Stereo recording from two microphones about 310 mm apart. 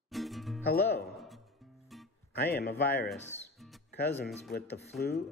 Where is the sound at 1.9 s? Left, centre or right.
Centre.